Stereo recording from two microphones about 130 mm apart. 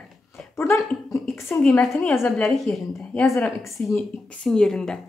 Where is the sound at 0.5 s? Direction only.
20° left (ahead or behind).